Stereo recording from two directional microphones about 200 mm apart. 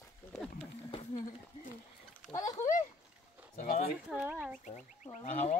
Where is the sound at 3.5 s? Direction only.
45° left (ahead or behind).